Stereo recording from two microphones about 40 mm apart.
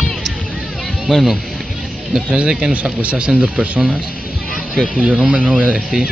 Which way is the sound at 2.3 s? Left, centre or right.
Right.